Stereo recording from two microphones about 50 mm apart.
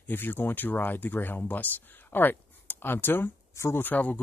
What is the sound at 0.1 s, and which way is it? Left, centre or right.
Speech, left.